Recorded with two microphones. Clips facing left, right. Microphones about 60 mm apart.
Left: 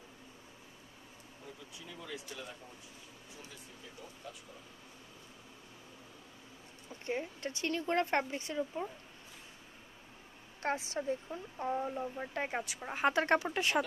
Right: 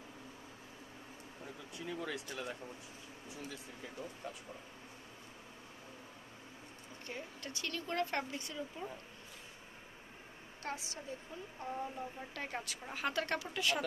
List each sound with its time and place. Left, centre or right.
2.0 s speech: right
7.1 s speech: left
10.6 s a woman's voice: left